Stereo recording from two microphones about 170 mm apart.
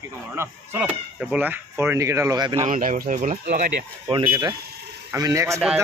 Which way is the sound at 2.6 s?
50° right (ahead or behind).